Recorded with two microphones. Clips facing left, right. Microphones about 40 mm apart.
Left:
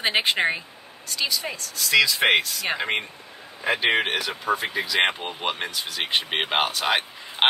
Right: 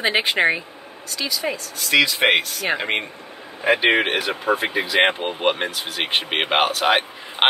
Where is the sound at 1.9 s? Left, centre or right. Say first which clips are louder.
Right 2 dB; right.